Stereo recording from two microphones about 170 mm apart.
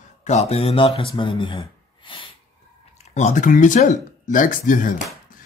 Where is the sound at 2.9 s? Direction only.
40° left (ahead or behind).